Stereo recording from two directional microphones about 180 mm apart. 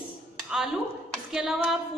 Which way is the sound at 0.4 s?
5° right (ahead or behind).